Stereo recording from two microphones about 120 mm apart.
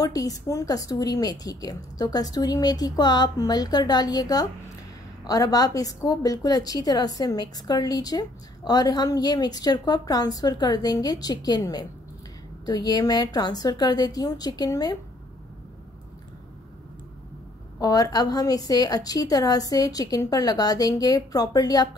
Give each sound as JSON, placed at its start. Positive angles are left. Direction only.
{"t": 0.0, "sound": "a woman's voice", "side_deg": 30}
{"t": 17.7, "sound": "a woman's voice", "side_deg": 30}